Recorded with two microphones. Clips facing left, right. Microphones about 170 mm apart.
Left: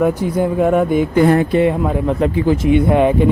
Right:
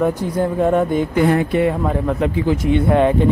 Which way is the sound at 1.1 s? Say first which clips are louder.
Left 4 dB; 40° left (ahead or behind).